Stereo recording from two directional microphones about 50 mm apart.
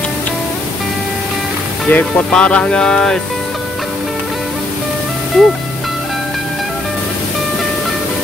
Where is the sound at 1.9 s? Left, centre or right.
Left; by 3.2 s centre.